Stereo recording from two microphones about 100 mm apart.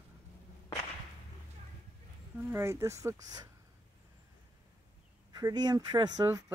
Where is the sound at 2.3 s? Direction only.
20° right (ahead or behind).